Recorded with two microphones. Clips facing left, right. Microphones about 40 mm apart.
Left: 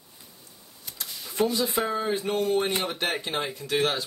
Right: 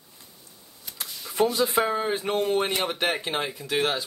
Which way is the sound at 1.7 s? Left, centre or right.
Right.